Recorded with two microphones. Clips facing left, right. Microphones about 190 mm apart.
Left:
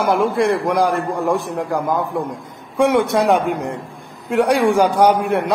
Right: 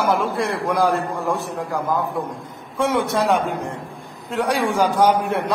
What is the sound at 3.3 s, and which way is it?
Speech, 65° left (ahead or behind).